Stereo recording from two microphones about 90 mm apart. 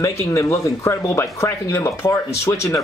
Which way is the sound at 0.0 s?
35° left (ahead or behind).